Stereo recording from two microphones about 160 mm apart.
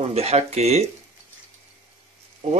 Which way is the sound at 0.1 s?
40° right (ahead or behind).